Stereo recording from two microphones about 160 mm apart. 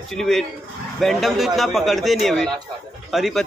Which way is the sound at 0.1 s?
Centre (ahead or behind).